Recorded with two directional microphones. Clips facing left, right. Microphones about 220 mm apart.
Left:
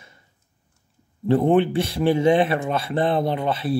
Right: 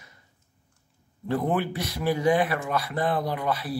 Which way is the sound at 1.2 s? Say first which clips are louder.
Left 8 dB; 25° left (ahead or behind).